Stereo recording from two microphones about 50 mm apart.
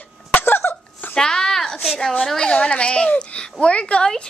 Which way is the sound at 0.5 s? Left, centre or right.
Left.